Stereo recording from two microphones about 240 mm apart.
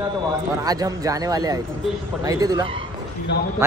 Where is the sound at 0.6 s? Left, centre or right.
Centre.